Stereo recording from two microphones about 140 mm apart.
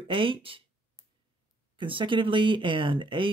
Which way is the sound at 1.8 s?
35° right (ahead or behind).